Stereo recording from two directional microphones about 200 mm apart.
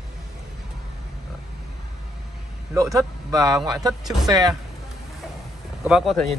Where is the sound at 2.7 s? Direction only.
15° right (ahead or behind).